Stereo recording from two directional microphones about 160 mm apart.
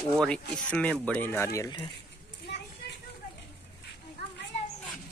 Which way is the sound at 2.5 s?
90° left.